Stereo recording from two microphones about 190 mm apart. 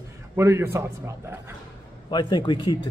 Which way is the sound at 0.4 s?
15° right (ahead or behind).